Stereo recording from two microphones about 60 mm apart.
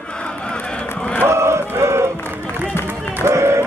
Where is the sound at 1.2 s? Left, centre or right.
Right.